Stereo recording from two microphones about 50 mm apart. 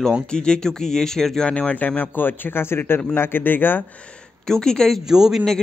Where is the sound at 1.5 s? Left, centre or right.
Left.